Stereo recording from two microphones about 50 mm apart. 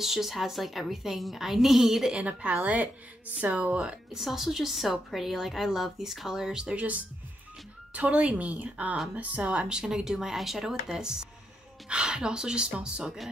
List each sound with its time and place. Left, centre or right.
0.0 s a woman's voice: centre
2.1 s a woman's voice: right
4.1 s a woman's voice: centre
7.9 s a woman's voice: right